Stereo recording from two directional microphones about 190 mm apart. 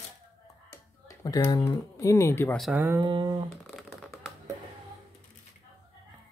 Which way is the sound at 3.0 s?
25° right (ahead or behind).